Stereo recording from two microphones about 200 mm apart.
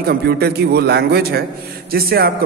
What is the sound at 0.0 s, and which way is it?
A man's voice, 50° right (ahead or behind).